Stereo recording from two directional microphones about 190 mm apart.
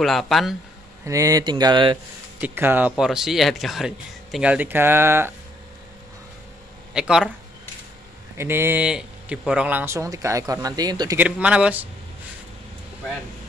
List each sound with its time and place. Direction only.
0.0 s speech: centre (ahead or behind)
1.0 s speech: 15° right (ahead or behind)
2.4 s speech: 10° right (ahead or behind)
6.9 s speech: 5° right (ahead or behind)
8.4 s speech: 10° right (ahead or behind)
11.1 s speech: 5° right (ahead or behind)